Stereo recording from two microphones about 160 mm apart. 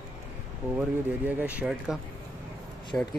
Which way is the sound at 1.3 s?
10° right (ahead or behind).